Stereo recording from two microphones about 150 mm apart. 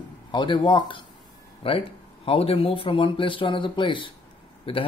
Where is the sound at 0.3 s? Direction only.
30° left (ahead or behind).